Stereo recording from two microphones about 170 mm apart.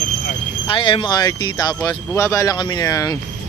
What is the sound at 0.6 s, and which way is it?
Speech, 30° left (ahead or behind).